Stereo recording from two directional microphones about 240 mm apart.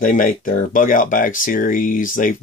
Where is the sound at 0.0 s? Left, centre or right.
Left.